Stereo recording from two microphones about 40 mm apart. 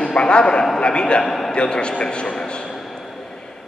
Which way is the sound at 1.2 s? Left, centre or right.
Centre.